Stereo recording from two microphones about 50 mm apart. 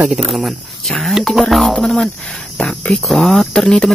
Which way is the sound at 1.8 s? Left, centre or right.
Left.